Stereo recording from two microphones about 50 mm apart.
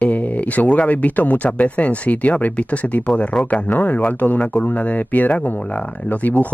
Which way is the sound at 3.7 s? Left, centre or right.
Left.